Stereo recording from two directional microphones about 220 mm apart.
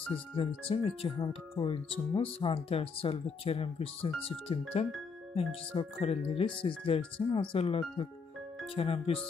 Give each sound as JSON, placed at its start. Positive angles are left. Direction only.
{"t": 0.1, "sound": "speech", "side_deg": 25}